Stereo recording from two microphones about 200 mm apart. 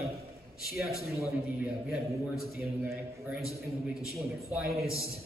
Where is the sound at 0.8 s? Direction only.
Centre (ahead or behind).